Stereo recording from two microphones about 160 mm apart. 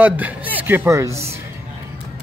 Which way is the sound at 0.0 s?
10° right (ahead or behind).